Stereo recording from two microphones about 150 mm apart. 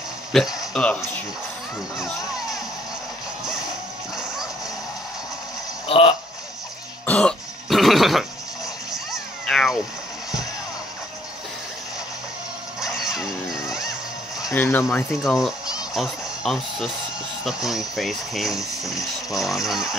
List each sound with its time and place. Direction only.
0.3 s speech: centre (ahead or behind)
2.0 s music: 5° right (ahead or behind)
5.9 s a sound: 40° left (ahead or behind)
7.1 s throat clearing: 5° left (ahead or behind)
8.9 s a sound: centre (ahead or behind)
12.8 s music: 5° right (ahead or behind)
14.5 s speech: 15° left (ahead or behind)
15.1 s speech: centre (ahead or behind)